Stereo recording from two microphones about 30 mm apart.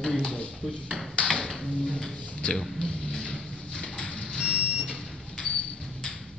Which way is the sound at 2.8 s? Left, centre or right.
Centre.